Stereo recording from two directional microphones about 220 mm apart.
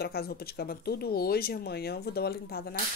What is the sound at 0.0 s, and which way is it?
Speech, 45° left (ahead or behind).